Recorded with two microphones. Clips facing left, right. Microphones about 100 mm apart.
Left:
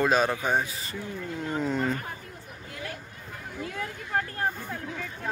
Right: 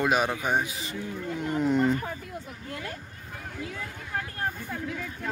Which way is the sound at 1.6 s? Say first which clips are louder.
Right 5 dB; 20° right (ahead or behind).